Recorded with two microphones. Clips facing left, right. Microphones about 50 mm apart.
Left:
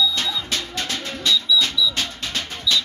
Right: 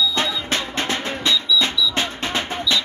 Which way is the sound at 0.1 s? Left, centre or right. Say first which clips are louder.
Right 3 dB; right.